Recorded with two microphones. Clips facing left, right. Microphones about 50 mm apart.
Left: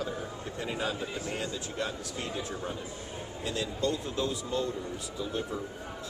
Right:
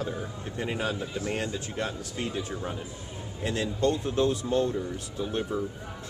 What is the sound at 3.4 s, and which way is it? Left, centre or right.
Speech, right.